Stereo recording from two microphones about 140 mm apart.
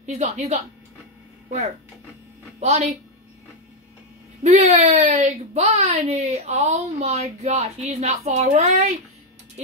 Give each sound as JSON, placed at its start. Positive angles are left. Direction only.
{"t": 0.0, "sound": "speech", "side_deg": -55}
{"t": 2.6, "sound": "speech", "side_deg": -50}
{"t": 4.4, "sound": "speech", "side_deg": -50}